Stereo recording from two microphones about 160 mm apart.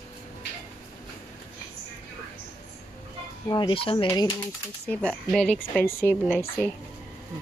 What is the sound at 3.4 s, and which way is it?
Speech, 30° left (ahead or behind).